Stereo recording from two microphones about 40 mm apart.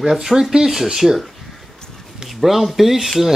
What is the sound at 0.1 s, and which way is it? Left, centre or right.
Speech, centre.